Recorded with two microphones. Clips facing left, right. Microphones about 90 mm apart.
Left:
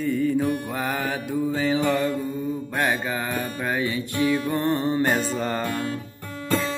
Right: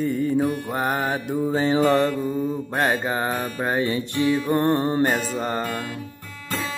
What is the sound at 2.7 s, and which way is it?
Mantra, 30° right (ahead or behind).